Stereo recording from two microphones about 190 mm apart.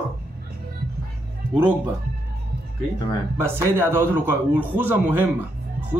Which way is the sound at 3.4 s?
10° right (ahead or behind).